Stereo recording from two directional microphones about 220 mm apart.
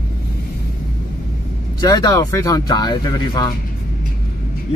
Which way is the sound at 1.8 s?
15° left (ahead or behind).